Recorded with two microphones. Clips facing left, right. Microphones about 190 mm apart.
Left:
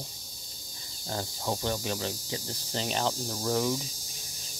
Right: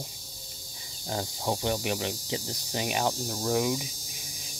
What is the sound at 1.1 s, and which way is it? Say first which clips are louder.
Speech: right 2 dB; 15° right (ahead or behind).